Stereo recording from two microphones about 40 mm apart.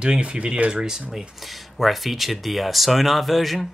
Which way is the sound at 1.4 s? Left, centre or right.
Centre.